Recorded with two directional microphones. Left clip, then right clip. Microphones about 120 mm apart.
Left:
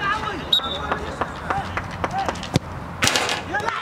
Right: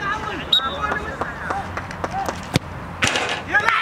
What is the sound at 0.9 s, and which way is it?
Run, 5° right (ahead or behind).